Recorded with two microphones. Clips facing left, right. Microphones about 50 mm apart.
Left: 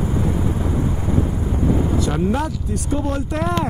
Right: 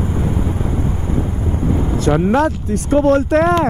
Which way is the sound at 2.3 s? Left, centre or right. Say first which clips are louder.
Right 8 dB; right.